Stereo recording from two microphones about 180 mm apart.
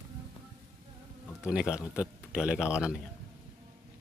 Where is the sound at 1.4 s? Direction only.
5° right (ahead or behind).